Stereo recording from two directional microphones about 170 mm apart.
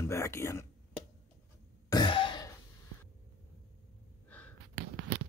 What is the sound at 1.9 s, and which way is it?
Throat clearing, 25° left (ahead or behind).